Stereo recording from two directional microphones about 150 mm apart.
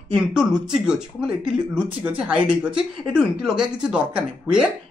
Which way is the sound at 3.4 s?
5° right (ahead or behind).